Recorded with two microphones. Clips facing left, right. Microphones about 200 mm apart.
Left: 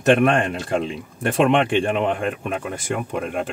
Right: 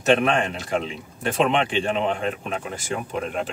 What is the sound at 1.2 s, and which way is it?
Speech, 55° left (ahead or behind).